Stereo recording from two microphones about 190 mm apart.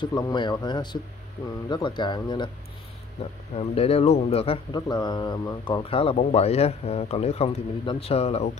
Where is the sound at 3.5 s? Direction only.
30° left (ahead or behind).